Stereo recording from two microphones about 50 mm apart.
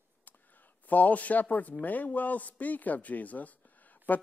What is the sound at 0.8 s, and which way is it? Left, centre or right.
Speech, left.